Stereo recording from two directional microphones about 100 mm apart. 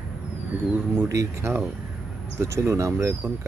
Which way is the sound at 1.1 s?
30° right (ahead or behind).